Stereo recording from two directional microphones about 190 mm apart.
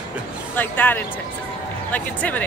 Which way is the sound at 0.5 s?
10° left (ahead or behind).